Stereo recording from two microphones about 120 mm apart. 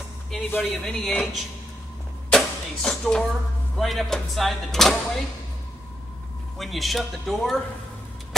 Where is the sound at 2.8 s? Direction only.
5° left (ahead or behind).